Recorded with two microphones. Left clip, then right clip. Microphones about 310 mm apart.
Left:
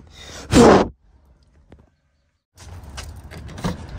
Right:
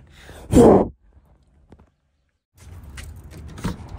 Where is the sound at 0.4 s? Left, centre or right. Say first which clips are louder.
Left 1 dB; right.